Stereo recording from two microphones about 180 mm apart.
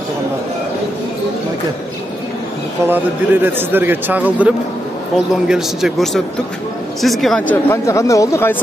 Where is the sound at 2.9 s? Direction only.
10° right (ahead or behind).